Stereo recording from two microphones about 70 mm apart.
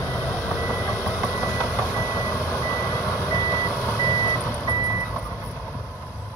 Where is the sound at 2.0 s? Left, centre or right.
Left.